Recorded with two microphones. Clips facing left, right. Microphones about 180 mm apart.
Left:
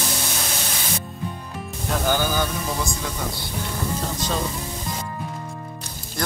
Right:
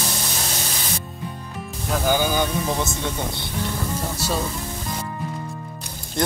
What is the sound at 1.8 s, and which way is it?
Speech, 10° right (ahead or behind).